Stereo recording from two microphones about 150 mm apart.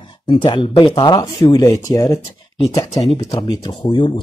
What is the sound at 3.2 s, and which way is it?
Speech, 25° left (ahead or behind).